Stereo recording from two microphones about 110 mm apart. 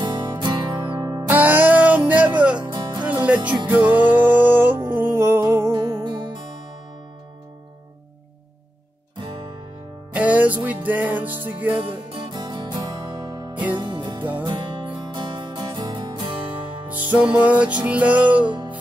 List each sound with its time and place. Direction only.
0.0 s music: 40° right (ahead or behind)
0.7 s music: 30° right (ahead or behind)
1.3 s music: 15° right (ahead or behind)
2.7 s music: 40° right (ahead or behind)
3.6 s music: 15° right (ahead or behind)
10.1 s music: 15° right (ahead or behind)
11.8 s music: 50° right (ahead or behind)
16.8 s music: 15° right (ahead or behind)